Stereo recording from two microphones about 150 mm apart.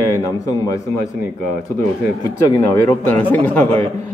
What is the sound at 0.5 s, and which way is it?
Speech, 20° left (ahead or behind).